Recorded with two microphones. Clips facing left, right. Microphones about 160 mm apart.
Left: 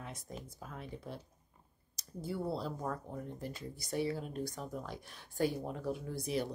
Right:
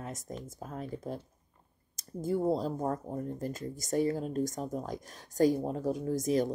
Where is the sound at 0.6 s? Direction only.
40° right (ahead or behind).